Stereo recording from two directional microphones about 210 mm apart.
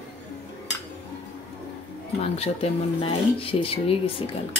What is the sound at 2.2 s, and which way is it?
Speech, 25° left (ahead or behind).